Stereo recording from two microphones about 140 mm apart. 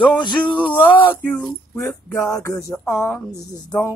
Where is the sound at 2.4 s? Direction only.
20° left (ahead or behind).